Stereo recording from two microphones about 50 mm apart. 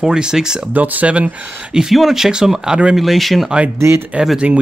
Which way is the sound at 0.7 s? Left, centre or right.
Right.